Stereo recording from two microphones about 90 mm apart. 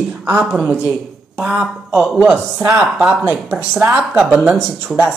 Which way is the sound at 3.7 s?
10° right (ahead or behind).